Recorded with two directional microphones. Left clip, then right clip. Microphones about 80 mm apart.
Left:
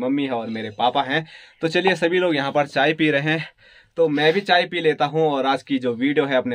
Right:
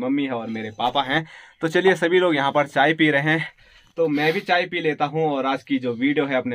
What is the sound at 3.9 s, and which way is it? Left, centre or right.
Speech, left.